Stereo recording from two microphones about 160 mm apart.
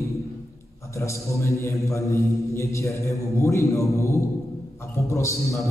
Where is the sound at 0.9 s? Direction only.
20° left (ahead or behind).